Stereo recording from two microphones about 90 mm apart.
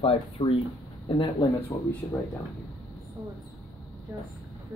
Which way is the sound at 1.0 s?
65° left (ahead or behind).